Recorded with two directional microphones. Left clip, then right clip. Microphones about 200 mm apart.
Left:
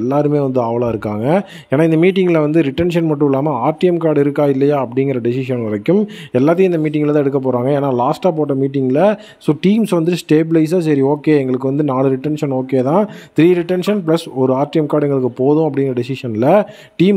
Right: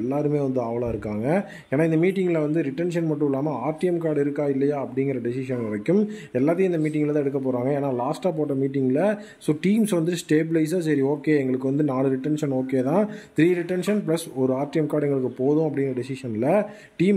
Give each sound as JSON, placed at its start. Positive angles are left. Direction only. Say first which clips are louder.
{"t": 0.1, "sound": "speech", "louder": "left 9 dB", "side_deg": 35}